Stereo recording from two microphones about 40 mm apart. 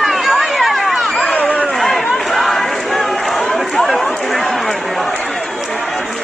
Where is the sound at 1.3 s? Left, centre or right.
Left.